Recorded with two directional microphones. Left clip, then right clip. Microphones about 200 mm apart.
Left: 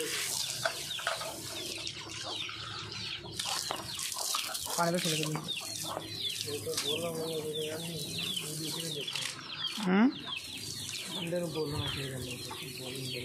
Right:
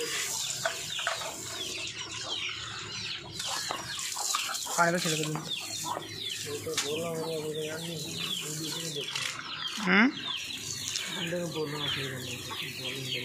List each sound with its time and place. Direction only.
4.7 s speech: centre (ahead or behind)
9.8 s speech: 20° left (ahead or behind)